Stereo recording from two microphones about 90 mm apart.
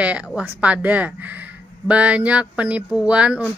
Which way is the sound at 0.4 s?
15° right (ahead or behind).